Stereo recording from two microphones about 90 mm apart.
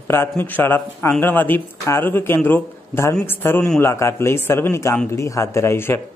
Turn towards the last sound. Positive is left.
turn(degrees=30)  # may be behind; listen again after turning